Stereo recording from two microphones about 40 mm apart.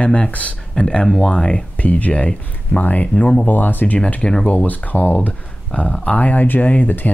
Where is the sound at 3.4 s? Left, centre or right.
Left.